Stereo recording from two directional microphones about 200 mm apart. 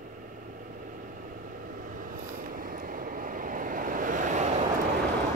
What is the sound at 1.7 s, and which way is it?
Vehicle, 45° right (ahead or behind).